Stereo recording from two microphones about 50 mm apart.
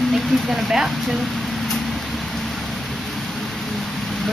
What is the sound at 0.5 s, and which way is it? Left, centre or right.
Speech, centre.